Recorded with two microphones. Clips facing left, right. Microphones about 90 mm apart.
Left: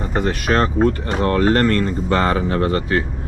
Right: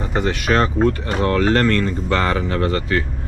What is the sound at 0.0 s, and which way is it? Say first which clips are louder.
Speech: even; 5° left (ahead or behind).